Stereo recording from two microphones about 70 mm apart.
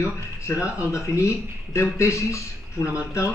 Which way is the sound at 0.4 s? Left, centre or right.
Left.